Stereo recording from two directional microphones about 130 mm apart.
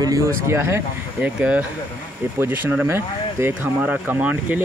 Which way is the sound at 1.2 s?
10° right (ahead or behind).